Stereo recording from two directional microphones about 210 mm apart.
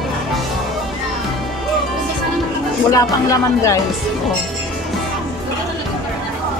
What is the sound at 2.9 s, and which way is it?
Speech, 15° left (ahead or behind).